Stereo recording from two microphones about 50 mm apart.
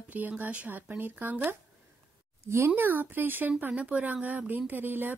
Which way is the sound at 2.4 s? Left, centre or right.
Right.